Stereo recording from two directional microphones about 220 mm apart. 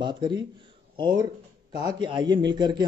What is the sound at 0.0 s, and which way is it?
Speech, 20° right (ahead or behind).